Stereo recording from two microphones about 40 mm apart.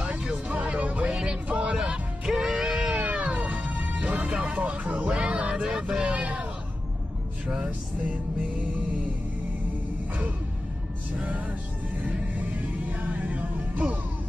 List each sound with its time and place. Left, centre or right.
0.0 s music: right
1.1 s music: right
3.0 s music: right
4.3 s music: right
4.6 s music: right
7.4 s music: right
11.1 s music: right
12.9 s music: right